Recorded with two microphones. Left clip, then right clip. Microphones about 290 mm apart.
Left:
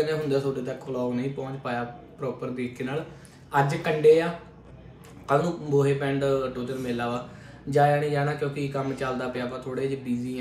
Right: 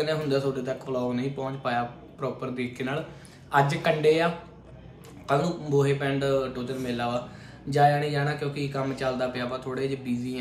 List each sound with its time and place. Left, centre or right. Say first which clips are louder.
0.0 s speech: left 1 dB; centre